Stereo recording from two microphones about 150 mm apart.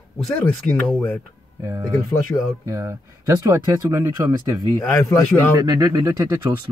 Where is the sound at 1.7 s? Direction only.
20° right (ahead or behind).